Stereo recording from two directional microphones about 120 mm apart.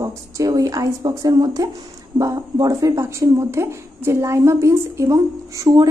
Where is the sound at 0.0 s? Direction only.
30° right (ahead or behind).